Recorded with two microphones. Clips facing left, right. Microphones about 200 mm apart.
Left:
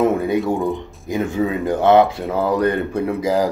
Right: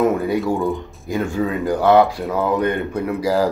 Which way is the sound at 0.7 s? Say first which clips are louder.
Even; 20° left (ahead or behind).